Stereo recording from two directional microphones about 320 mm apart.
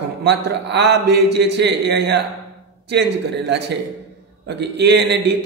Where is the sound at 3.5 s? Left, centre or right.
Right.